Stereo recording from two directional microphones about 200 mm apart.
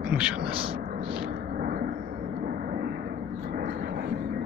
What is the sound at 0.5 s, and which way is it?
Speech, 25° right (ahead or behind).